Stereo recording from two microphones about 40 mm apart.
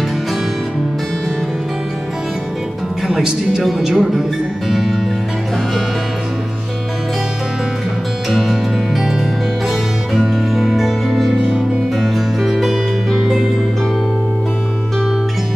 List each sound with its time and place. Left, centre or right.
3.2 s speech: centre
4.6 s music: centre
8.3 s music: centre
10.5 s music: centre